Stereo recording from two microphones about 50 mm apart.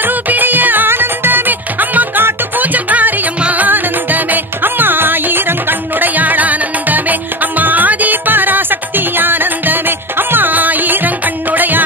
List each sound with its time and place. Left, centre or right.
0.0 s music: right